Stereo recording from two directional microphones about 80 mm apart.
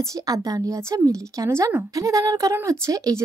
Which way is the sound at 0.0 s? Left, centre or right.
Right.